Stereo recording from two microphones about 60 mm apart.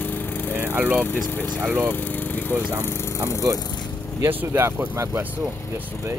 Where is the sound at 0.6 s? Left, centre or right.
Right.